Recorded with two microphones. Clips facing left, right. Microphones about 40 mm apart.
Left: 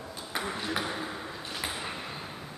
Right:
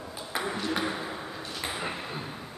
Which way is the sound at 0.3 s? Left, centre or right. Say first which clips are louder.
Right 2 dB; centre.